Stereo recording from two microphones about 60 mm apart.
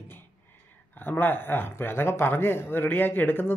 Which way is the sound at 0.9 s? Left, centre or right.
Left.